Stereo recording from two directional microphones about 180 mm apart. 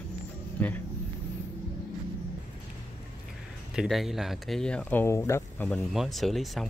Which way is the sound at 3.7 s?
Centre (ahead or behind).